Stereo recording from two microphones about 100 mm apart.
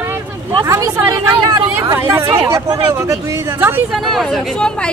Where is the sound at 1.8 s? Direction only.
30° right (ahead or behind).